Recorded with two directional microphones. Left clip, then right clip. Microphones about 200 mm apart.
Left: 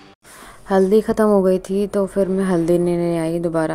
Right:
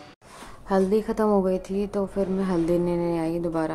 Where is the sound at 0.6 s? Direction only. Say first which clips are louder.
Left 7 dB; 25° left (ahead or behind).